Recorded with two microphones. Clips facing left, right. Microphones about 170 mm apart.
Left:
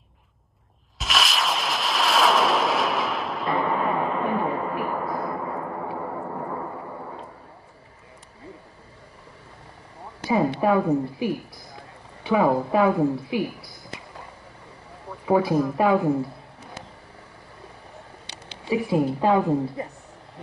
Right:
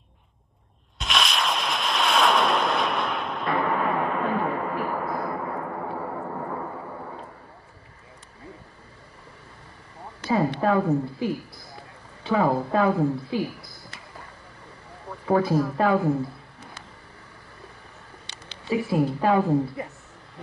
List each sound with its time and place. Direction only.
0.9 s artillery fire: centre (ahead or behind)
4.2 s a sound: 15° left (ahead or behind)
10.2 s a woman's voice: 15° left (ahead or behind)
15.2 s a woman's voice: 15° left (ahead or behind)
18.5 s a woman's voice: 15° left (ahead or behind)